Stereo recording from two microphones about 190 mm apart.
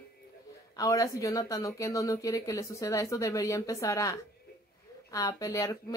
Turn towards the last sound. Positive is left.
turn(degrees=15)  # may be behind; listen again after turning